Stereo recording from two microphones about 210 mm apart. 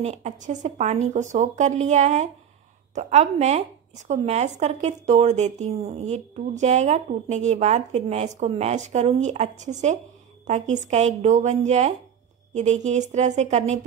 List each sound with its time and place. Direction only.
0.0 s speech: 30° right (ahead or behind)